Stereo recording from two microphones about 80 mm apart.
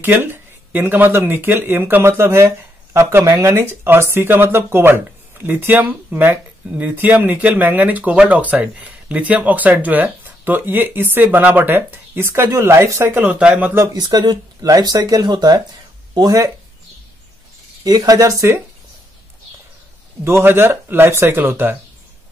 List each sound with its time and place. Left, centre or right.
0.0 s speech: right
12.4 s speech: right
14.0 s speech: right
16.2 s speech: right
17.8 s speech: right
20.2 s speech: right